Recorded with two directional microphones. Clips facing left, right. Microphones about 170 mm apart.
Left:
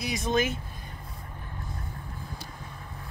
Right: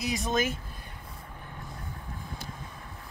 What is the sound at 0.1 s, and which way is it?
Speech, 45° right (ahead or behind).